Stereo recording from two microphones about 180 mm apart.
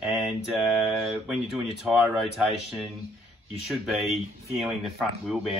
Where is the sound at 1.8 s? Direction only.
Centre (ahead or behind).